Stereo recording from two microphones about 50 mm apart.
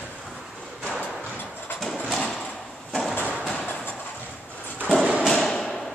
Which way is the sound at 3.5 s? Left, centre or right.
Left.